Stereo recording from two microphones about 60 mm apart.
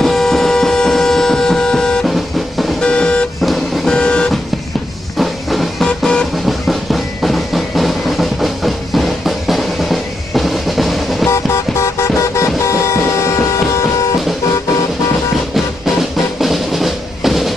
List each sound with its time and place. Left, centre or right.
0.0 s a sound: centre
2.0 s music: centre
2.8 s vehicle: centre
3.4 s vehicle: centre
3.9 s vehicle: centre
5.2 s music: centre
5.9 s vehicle: centre
6.4 s music: centre
11.2 s vehicle: left
15.5 s music: centre